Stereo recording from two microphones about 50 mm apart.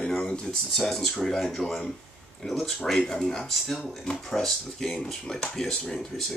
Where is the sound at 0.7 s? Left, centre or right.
Centre.